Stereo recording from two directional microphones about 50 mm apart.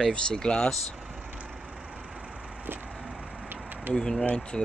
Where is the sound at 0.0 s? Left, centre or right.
Centre.